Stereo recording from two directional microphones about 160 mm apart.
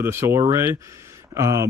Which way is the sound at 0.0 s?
15° right (ahead or behind).